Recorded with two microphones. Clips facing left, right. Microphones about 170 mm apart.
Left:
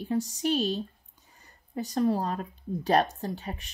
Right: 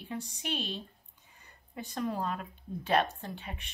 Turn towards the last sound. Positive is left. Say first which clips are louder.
# left 7 dB
turn(degrees=40)  # may be behind; listen again after turning